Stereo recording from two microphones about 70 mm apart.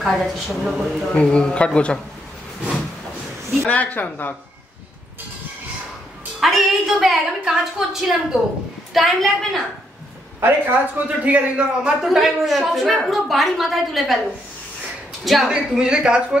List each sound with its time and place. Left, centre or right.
0.0 s a woman's voice: centre
1.1 s speech: centre
3.6 s speech: left
6.4 s a woman's voice: centre
10.4 s a man's voice: right
12.0 s a woman's voice: centre
15.2 s a woman's voice: centre